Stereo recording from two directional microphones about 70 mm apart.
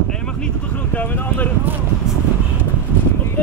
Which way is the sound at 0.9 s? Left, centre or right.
Left.